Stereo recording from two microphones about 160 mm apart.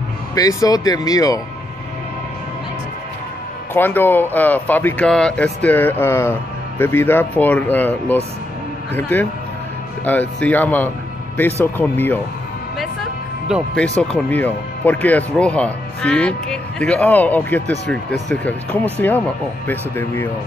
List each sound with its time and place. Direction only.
0.3 s speech: 20° left (ahead or behind)
3.7 s speech: 10° left (ahead or behind)
14.1 s speech: 10° left (ahead or behind)